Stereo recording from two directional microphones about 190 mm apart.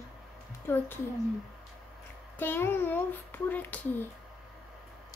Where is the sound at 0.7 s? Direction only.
10° left (ahead or behind).